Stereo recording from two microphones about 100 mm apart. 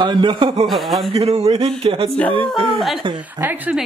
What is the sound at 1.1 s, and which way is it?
Speech, 90° right.